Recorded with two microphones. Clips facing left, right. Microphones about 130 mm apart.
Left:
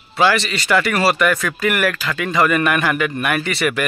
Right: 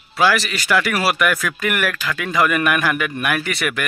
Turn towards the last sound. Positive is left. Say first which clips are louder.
# left 3 dB
turn(degrees=0)  # may be behind; listen again after turning